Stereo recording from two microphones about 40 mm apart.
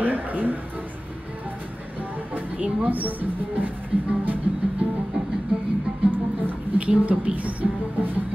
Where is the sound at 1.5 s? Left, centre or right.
Right.